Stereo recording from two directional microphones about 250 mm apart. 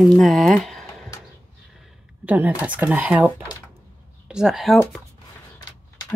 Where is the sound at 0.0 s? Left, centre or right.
Centre.